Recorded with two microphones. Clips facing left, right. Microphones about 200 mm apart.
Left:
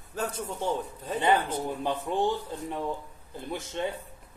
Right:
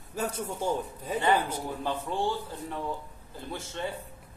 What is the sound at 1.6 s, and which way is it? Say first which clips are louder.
A man's voice: left 2 dB; 20° left (ahead or behind).